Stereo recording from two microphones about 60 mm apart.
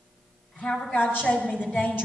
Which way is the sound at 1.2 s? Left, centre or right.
Centre.